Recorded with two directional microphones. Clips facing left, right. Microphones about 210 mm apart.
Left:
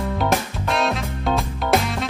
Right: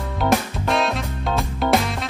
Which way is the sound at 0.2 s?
Centre (ahead or behind).